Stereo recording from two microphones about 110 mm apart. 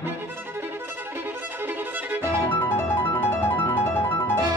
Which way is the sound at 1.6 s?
20° right (ahead or behind).